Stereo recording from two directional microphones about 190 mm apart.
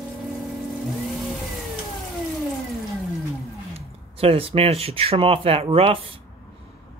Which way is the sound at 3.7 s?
30° right (ahead or behind).